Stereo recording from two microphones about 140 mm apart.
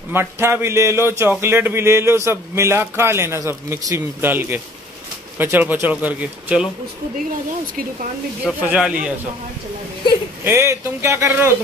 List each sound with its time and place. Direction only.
0.1 s speech: 15° right (ahead or behind)
8.5 s speech: 10° right (ahead or behind)
10.4 s speech: 20° right (ahead or behind)